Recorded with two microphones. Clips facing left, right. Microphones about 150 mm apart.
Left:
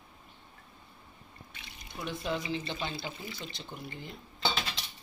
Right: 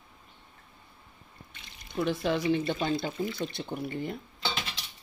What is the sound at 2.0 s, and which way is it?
Speech, 75° right (ahead or behind).